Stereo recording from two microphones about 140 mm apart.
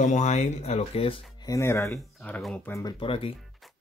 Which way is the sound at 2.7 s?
25° left (ahead or behind).